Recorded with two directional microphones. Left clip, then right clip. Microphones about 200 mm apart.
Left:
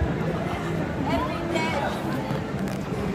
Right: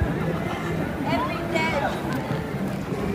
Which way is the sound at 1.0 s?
35° right (ahead or behind).